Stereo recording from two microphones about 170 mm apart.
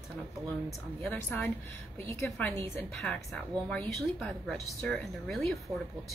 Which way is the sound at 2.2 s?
10° left (ahead or behind).